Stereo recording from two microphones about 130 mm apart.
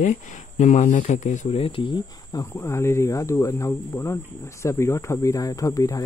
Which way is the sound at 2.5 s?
20° left (ahead or behind).